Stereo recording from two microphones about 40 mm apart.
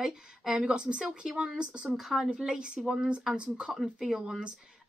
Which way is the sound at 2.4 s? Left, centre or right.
Centre.